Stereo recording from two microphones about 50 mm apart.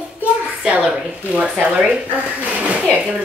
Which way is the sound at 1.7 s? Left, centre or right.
Centre.